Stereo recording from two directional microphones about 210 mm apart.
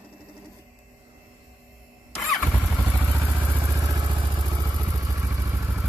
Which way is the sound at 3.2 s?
10° right (ahead or behind).